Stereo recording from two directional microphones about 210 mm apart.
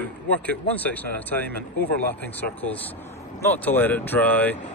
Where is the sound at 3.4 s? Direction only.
10° left (ahead or behind).